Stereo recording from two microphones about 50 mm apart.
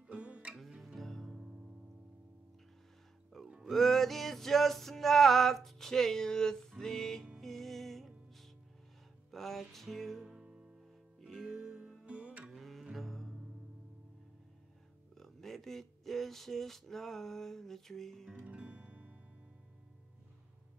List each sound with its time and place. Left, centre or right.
0.1 s music: right
0.7 s music: centre
1.0 s music: centre
1.3 s music: centre
3.6 s music: centre
10.2 s music: centre
11.1 s music: centre
12.1 s music: right
12.5 s music: centre
15.1 s speech: centre
18.4 s music: right